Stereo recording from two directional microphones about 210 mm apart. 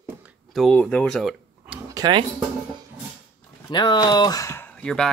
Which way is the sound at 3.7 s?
20° left (ahead or behind).